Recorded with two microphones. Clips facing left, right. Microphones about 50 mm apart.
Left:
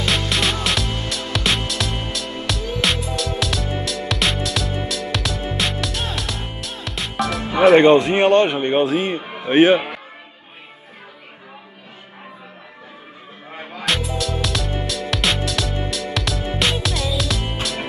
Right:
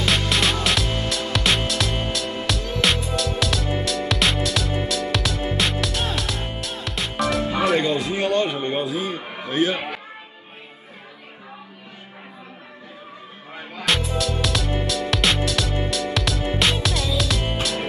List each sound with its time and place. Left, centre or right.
0.0 s music: centre
7.7 s speech: left
13.8 s music: centre